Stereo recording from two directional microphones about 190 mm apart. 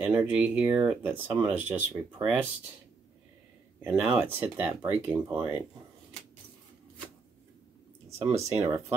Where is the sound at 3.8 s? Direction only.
10° right (ahead or behind).